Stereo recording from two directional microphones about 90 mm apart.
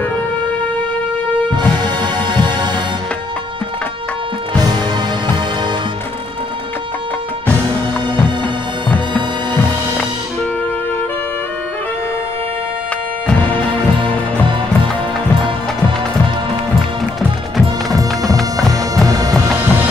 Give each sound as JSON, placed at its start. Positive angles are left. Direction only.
{"t": 8.8, "sound": "music", "side_deg": 15}
{"t": 13.3, "sound": "music", "side_deg": 15}
{"t": 19.0, "sound": "music", "side_deg": -40}
{"t": 19.4, "sound": "music", "side_deg": -15}